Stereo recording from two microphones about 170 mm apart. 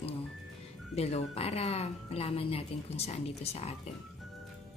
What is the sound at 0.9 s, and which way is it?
A woman's voice, 40° left (ahead or behind).